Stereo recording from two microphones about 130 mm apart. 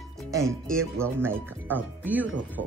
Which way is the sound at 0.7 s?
20° right (ahead or behind).